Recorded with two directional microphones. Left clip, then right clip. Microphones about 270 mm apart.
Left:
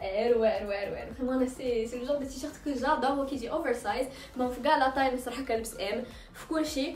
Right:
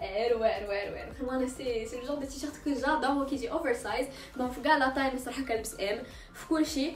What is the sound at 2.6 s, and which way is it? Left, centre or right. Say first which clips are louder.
A woman's voice: left 1 dB; centre.